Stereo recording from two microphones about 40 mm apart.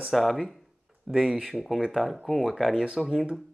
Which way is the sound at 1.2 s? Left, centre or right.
Centre.